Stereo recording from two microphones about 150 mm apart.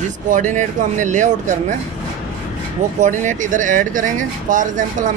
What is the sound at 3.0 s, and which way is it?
Speech, 55° right (ahead or behind).